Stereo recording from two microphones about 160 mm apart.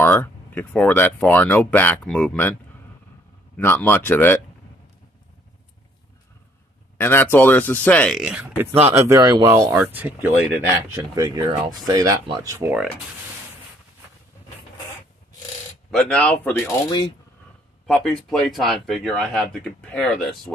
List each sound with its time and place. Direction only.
0.0 s speech: 15° left (ahead or behind)
3.5 s speech: 10° left (ahead or behind)
7.0 s speech: 15° left (ahead or behind)
8.2 s speech: 5° right (ahead or behind)
8.9 s speech: 15° right (ahead or behind)
9.7 s speech: 15° right (ahead or behind)
15.9 s speech: 5° left (ahead or behind)
17.8 s speech: 5° left (ahead or behind)